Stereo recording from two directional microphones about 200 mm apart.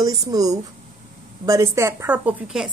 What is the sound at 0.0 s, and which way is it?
A woman's voice, 20° right (ahead or behind).